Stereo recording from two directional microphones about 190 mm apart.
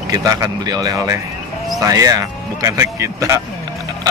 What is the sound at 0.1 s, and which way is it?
Speech, 20° right (ahead or behind).